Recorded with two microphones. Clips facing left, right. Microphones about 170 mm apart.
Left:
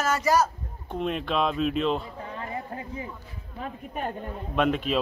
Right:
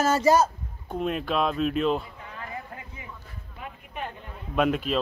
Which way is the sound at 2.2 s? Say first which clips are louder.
Left 4 dB; 30° left (ahead or behind).